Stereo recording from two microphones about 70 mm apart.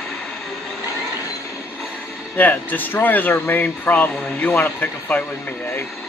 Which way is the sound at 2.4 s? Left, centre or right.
Left.